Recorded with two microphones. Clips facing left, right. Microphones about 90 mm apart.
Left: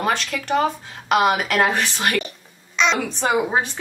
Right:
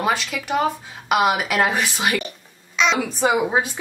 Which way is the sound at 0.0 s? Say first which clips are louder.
Even; 5° right (ahead or behind).